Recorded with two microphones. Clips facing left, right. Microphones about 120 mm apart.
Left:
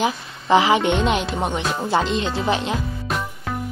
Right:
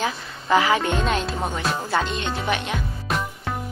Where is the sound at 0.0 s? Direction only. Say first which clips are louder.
Left 4 dB; 25° left (ahead or behind).